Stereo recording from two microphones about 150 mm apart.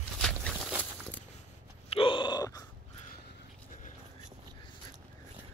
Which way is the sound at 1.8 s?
35° left (ahead or behind).